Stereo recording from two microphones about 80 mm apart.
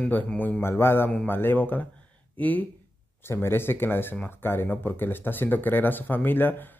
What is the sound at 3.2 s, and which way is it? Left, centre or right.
Speech, left.